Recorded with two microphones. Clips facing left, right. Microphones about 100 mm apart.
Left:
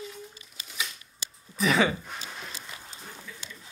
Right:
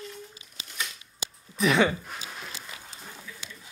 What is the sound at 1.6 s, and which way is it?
Speech, centre (ahead or behind).